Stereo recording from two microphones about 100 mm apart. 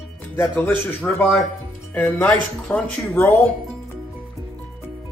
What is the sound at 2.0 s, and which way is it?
Speech, 20° left (ahead or behind).